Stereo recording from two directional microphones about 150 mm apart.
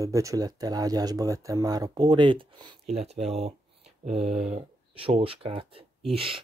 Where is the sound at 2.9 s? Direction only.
45° right (ahead or behind).